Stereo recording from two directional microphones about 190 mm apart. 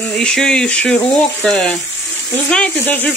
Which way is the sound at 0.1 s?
5° left (ahead or behind).